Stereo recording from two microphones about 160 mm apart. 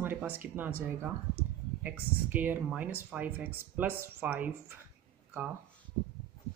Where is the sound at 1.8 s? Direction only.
10° right (ahead or behind).